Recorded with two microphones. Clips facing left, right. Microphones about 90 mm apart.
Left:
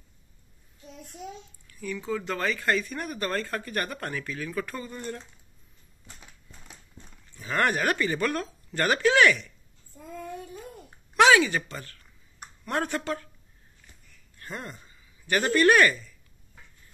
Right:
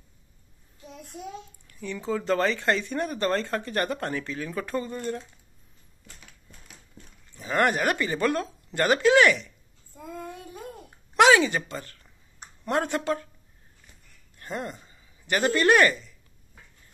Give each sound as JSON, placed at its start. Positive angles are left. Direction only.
{"t": 1.7, "sound": "speech", "side_deg": -30}
{"t": 7.3, "sound": "speech", "side_deg": -20}
{"t": 10.1, "sound": "child singing", "side_deg": -55}
{"t": 11.1, "sound": "speech", "side_deg": -20}
{"t": 14.4, "sound": "speech", "side_deg": -20}